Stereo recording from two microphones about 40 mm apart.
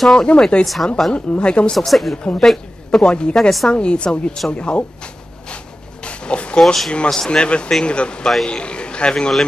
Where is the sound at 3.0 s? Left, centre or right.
Left.